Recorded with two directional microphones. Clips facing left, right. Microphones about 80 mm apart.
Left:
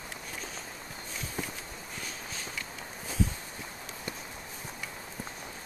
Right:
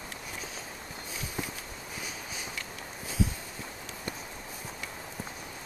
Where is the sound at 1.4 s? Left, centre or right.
Centre.